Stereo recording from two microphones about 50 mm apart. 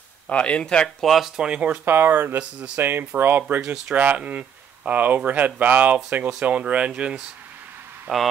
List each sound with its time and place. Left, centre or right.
0.3 s speech: left
0.8 s speech: centre
1.4 s speech: right
1.9 s speech: right; by 7.2 s centre
8.1 s speech: centre